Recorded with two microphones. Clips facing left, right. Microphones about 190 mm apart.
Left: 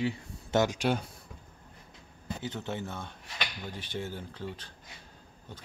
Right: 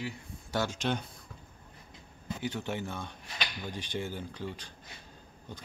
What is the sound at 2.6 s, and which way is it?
Speech, 15° right (ahead or behind).